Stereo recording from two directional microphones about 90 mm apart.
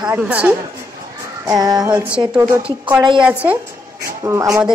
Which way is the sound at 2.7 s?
15° right (ahead or behind).